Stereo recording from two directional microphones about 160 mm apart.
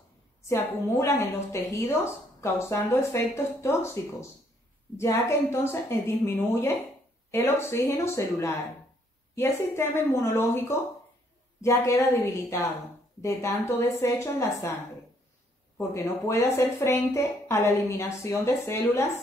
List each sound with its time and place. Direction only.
0.5 s a woman's voice: 15° left (ahead or behind)
15.9 s a woman's voice: 20° left (ahead or behind)